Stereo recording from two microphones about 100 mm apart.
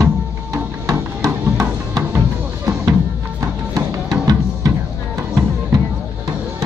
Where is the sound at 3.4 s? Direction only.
35° right (ahead or behind).